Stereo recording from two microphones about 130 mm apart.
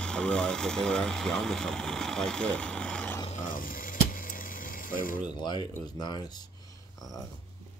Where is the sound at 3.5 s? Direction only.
90° left.